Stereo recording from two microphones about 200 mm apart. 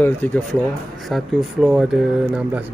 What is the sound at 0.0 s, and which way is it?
Speech, 10° left (ahead or behind).